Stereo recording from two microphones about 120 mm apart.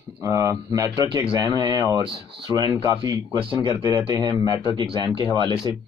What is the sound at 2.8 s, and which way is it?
Speech, 30° right (ahead or behind).